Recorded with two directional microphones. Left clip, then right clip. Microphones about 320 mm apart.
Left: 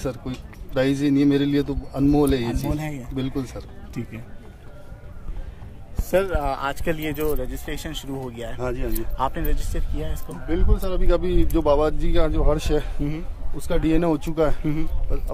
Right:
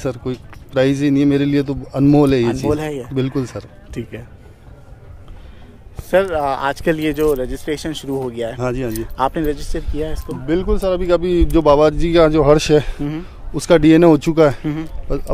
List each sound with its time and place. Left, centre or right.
0.0 s a man's voice: centre
2.7 s speech: centre
3.2 s a man's voice: centre
4.0 s speech: centre
6.0 s speech: centre
8.5 s a man's voice: centre
9.1 s speech: centre
10.5 s a man's voice: centre